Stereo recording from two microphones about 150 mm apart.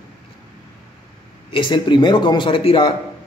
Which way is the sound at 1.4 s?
35° left (ahead or behind).